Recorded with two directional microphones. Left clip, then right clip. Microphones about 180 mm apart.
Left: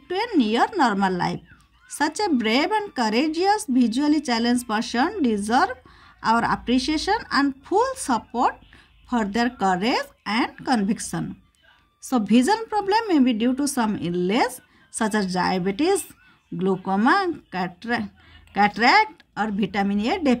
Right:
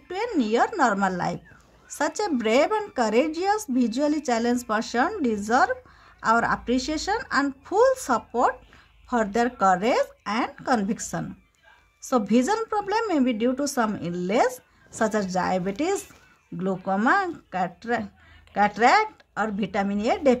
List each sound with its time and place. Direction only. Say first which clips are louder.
0.1 s speech: left 2 dB; 15° left (ahead or behind)